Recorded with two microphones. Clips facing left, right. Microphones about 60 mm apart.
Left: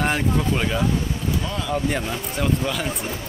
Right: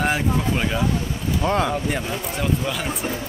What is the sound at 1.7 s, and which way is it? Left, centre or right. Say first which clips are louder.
Speech: left 1 dB; centre.